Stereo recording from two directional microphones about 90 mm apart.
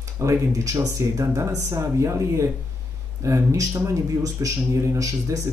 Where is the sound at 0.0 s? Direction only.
35° right (ahead or behind).